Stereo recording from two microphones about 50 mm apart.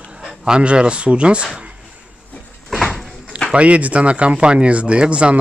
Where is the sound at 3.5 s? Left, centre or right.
Right.